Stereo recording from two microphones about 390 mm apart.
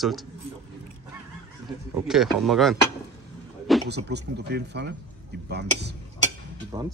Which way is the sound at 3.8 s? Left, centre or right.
Right.